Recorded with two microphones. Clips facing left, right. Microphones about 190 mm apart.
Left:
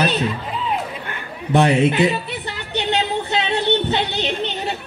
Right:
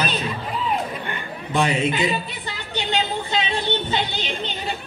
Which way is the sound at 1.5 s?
65° left (ahead or behind).